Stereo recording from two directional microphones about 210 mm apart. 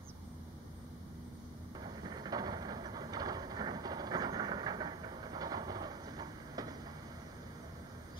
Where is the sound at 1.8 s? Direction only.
20° right (ahead or behind).